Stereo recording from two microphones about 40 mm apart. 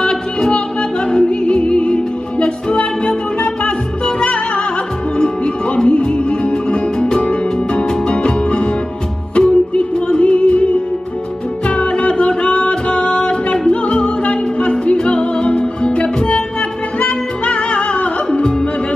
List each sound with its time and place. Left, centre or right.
0.0 s music: centre